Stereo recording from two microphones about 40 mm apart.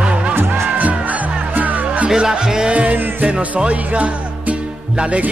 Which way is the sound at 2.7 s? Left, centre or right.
Right.